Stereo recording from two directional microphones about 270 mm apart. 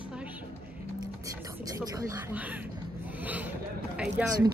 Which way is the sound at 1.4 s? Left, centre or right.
Centre.